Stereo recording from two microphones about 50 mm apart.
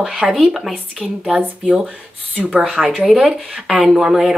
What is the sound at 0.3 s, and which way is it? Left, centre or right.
Speech, centre.